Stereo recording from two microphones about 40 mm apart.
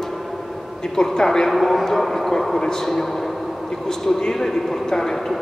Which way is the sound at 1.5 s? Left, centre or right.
Centre.